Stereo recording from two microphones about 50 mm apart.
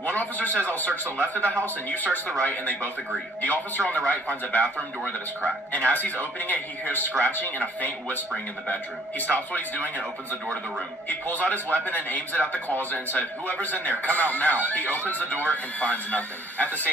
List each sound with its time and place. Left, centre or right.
0.0 s a man's voice: left
9.2 s a man's voice: left
11.1 s a man's voice: left